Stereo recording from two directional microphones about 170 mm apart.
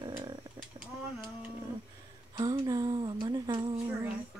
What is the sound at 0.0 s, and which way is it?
Livestock, 25° right (ahead or behind).